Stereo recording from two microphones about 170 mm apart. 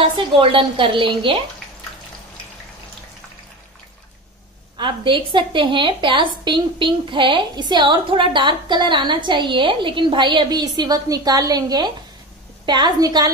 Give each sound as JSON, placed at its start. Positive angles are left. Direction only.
{"t": 0.0, "sound": "a woman's voice", "side_deg": -30}
{"t": 4.7, "sound": "a woman's voice", "side_deg": -30}